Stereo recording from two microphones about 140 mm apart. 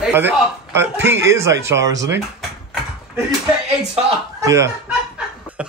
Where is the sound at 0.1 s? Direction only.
15° right (ahead or behind).